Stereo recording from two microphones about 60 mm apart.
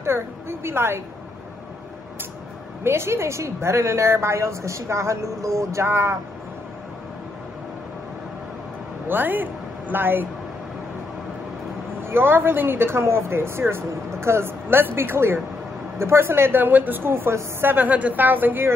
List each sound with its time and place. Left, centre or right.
0.0 s a woman's voice: right
2.8 s a woman's voice: right
9.0 s speech: right
12.0 s speech: right